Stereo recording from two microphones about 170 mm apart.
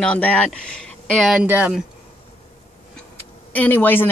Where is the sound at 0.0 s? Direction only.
5° left (ahead or behind).